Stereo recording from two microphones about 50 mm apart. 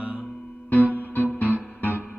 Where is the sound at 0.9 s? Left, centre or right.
Right.